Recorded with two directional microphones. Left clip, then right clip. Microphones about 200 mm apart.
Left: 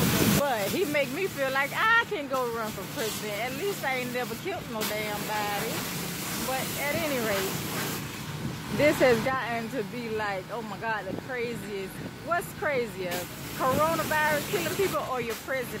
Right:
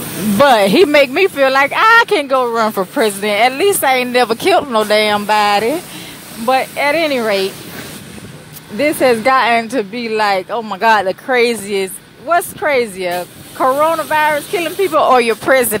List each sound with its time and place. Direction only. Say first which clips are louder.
0.5 s speech: right 19 dB; 45° right (ahead or behind)
8.7 s speech: right 9 dB; 45° right (ahead or behind)